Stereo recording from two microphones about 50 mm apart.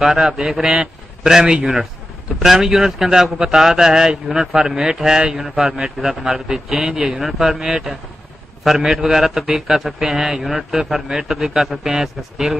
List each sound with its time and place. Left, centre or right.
0.0 s a man's voice: centre
6.8 s speech: centre
7.2 s a man's voice: centre